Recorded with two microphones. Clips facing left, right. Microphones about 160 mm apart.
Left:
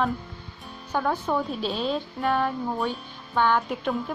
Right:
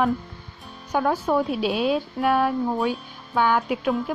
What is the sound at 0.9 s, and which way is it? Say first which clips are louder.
Speech: right 4 dB; 10° right (ahead or behind).